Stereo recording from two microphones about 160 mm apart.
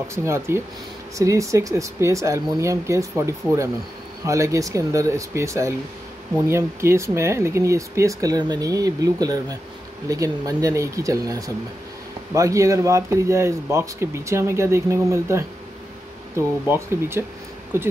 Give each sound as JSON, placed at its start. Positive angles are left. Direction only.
{"t": 0.1, "sound": "speech", "side_deg": -15}